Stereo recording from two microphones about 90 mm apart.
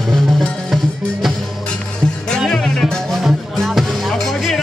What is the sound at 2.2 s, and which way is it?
Music, 5° left (ahead or behind).